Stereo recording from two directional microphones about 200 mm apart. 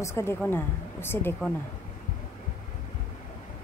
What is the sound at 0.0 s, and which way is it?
A woman's voice, 10° left (ahead or behind).